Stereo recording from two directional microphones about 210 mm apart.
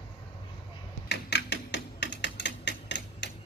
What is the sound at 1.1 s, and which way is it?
Typing, 55° left (ahead or behind).